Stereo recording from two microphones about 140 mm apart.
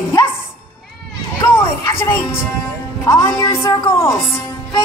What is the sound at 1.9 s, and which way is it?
Music, 15° left (ahead or behind).